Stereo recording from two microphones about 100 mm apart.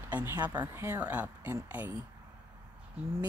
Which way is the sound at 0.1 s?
20° right (ahead or behind).